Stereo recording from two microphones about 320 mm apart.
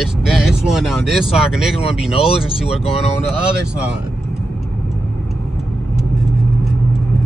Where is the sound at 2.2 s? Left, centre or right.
Centre.